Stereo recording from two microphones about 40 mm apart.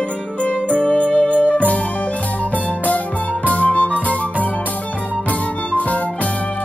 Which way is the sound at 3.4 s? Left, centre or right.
Left.